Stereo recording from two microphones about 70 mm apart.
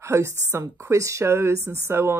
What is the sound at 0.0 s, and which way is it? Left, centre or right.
Speech, right.